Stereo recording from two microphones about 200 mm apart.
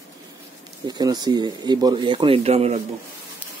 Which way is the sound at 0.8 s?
20° right (ahead or behind).